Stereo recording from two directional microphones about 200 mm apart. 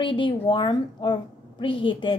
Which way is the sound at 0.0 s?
25° left (ahead or behind).